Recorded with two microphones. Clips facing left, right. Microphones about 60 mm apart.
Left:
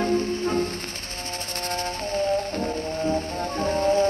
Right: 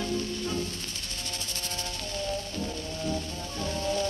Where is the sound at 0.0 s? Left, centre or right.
Left.